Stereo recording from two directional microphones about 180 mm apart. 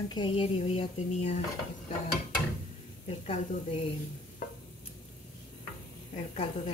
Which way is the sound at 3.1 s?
30° left (ahead or behind).